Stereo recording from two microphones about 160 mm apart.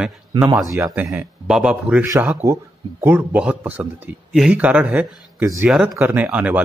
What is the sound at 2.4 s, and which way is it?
A man's voice, 20° right (ahead or behind).